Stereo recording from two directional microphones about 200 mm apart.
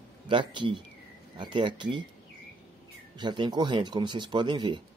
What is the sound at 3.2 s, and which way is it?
Speech, 20° right (ahead or behind).